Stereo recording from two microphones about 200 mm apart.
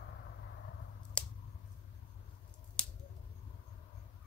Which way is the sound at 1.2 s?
5° left (ahead or behind).